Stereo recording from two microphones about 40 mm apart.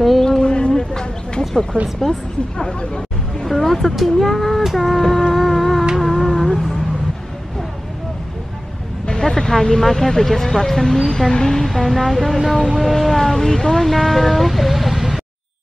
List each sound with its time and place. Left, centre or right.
0.2 s a sound: centre
0.5 s a sound: left
1.5 s speech: centre
2.8 s hubbub: left
3.4 s speech: centre
5.3 s music: centre
6.0 s humming: centre
9.0 s a sound: left
9.3 s speech: centre
11.6 s speech: centre